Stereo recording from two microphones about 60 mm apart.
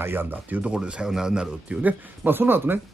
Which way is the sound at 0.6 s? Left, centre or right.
Centre.